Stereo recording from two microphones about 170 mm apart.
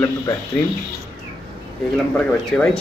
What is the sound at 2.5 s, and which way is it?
Speech, 5° left (ahead or behind).